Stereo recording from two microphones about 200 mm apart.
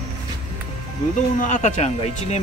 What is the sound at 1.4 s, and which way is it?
Speech, 35° left (ahead or behind).